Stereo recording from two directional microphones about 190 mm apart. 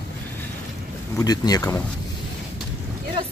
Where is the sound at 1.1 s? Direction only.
20° left (ahead or behind).